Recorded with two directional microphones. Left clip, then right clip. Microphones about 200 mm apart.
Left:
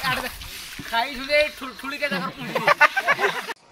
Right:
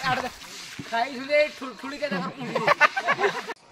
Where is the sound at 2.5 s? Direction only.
20° left (ahead or behind).